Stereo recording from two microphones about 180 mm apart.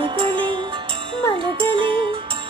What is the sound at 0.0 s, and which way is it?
Music, 25° right (ahead or behind).